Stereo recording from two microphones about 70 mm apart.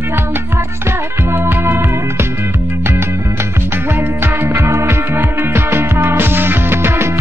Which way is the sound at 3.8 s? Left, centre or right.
Right.